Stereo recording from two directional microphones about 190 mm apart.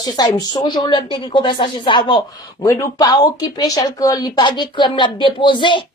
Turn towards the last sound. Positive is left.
turn(degrees=25)  # may be behind; listen again after turning